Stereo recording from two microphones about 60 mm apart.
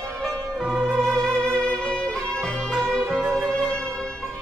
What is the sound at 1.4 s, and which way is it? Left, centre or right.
Music, centre.